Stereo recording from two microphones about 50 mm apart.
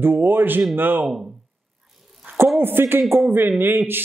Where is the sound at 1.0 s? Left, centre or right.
Centre.